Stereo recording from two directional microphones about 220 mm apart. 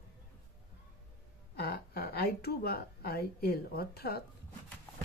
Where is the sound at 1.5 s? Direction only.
45° left (ahead or behind).